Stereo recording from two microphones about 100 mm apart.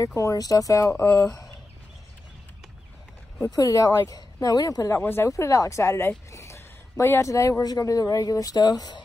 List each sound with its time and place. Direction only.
0.0 s speech: 30° left (ahead or behind)
3.4 s speech: 35° left (ahead or behind)